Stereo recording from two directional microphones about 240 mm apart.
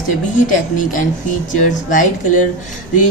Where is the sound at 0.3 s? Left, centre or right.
Left.